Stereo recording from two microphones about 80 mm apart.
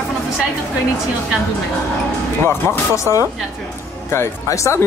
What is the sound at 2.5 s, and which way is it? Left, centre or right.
Speech, left.